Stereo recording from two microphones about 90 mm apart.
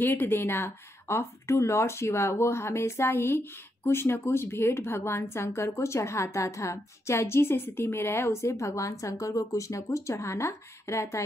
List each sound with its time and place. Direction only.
0.0 s speech: 20° left (ahead or behind)